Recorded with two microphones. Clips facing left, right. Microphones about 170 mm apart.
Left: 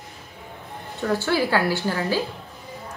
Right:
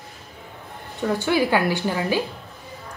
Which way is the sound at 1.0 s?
15° right (ahead or behind).